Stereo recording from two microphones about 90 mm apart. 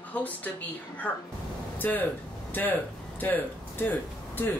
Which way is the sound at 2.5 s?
20° left (ahead or behind).